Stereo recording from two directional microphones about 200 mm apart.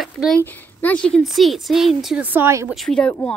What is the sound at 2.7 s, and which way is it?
Speech, 5° left (ahead or behind).